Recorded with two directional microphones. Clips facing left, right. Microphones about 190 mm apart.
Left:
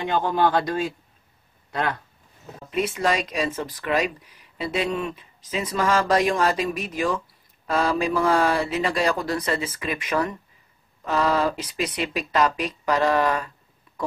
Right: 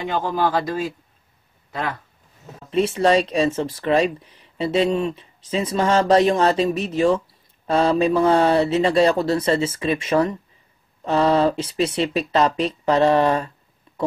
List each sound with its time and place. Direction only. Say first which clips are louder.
0.1 s a man's voice: left 1 dB; 5° right (ahead or behind)
2.7 s speech: right 6 dB; 30° right (ahead or behind)